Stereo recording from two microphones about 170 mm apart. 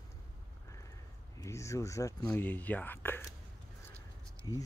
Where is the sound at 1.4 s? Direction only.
15° left (ahead or behind).